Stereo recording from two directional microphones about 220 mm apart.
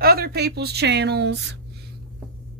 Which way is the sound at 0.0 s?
45° right (ahead or behind).